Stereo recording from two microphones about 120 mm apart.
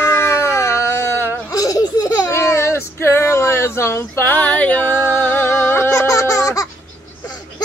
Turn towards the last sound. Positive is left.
turn(degrees=30)  # may be behind; listen again after turning